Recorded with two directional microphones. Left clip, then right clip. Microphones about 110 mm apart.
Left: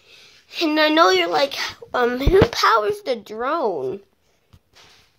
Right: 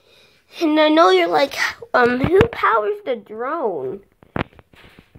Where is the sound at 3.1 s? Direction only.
30° left (ahead or behind).